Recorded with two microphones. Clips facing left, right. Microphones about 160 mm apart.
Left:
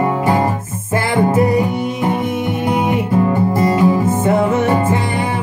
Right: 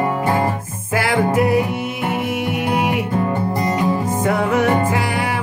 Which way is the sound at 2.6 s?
30° left (ahead or behind).